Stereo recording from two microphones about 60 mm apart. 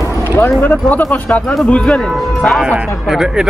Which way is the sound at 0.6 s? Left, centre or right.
Left.